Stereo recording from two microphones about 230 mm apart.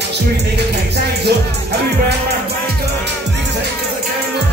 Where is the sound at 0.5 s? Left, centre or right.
Right.